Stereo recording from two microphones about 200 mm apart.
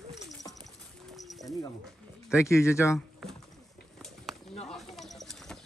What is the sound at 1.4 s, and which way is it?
Music, 15° left (ahead or behind).